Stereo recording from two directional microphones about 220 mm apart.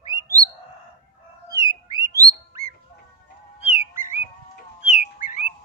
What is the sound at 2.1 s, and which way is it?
Bird, 15° right (ahead or behind).